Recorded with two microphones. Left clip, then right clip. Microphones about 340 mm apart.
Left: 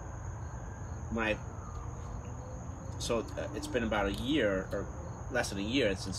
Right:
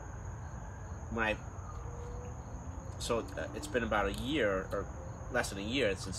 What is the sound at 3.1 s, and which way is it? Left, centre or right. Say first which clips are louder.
Speech: left 1 dB; centre.